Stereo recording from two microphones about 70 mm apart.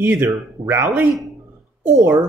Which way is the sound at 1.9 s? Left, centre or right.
Right.